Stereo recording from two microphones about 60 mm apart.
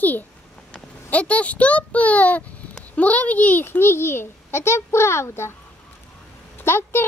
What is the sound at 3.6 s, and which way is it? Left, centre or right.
A child's voice, left.